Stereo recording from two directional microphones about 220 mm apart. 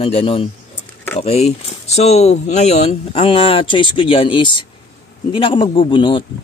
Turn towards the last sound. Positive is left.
turn(degrees=20)  # may be behind; listen again after turning